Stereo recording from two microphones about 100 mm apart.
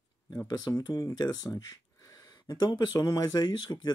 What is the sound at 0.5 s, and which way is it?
Speech, 40° left (ahead or behind).